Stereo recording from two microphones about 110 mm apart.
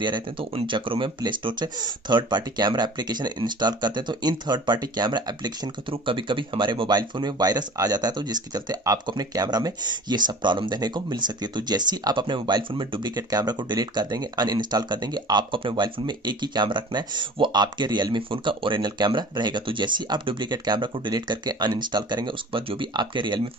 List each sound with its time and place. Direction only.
0.0 s speech: 45° right (ahead or behind)